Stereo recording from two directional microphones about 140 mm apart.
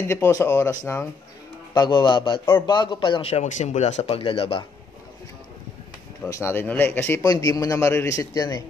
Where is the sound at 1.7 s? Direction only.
35° left (ahead or behind).